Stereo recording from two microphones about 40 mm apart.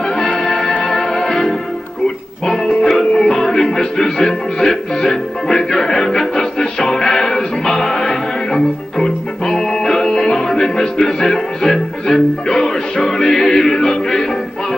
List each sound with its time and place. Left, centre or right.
0.1 s music: centre
0.8 s music: centre
2.5 s music: centre
12.4 s music: left
13.0 s music: centre